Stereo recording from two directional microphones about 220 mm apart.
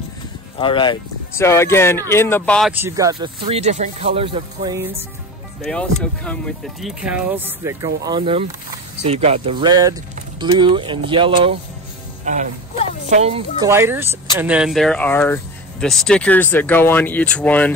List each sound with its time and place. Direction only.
0.6 s speech: 20° left (ahead or behind)
1.4 s speech: 10° left (ahead or behind)
2.7 s speech: 15° right (ahead or behind)
5.6 s speech: 5° left (ahead or behind); by 11.5 s 25° right (ahead or behind)
12.3 s speech: 35° right (ahead or behind)
13.7 s speech: 10° right (ahead or behind); by 17.7 s 5° left (ahead or behind)